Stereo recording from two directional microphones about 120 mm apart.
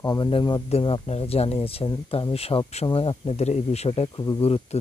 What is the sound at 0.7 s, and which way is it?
Speech, 50° left (ahead or behind).